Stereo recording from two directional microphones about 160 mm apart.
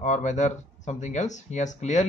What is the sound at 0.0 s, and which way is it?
Speech, 50° left (ahead or behind).